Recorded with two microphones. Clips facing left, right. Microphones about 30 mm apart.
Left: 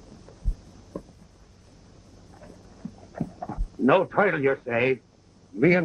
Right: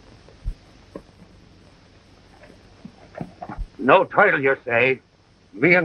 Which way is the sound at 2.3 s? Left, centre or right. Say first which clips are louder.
Even; right.